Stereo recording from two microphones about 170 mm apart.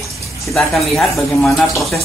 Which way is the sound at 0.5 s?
5° left (ahead or behind).